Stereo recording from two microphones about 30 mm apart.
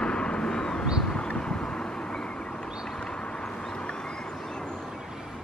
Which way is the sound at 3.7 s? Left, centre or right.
Left.